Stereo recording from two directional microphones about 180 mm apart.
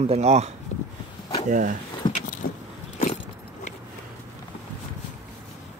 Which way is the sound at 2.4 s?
60° left (ahead or behind).